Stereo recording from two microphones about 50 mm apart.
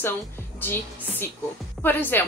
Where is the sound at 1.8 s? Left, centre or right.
Left.